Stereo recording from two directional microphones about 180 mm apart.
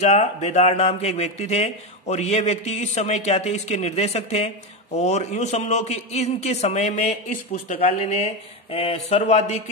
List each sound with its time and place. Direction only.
0.0 s speech: 40° left (ahead or behind)